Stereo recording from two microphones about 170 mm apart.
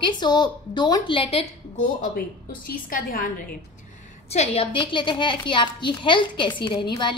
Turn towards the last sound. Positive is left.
turn(degrees=25)  # may be behind; listen again after turning